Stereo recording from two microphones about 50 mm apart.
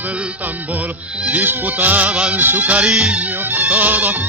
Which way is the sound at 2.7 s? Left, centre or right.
Right.